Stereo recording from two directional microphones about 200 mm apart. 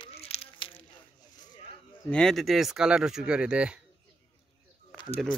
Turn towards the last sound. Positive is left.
turn(degrees=5)  # may be behind; listen again after turning